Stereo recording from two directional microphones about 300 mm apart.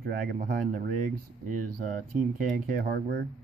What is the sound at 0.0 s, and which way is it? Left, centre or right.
Speech, right.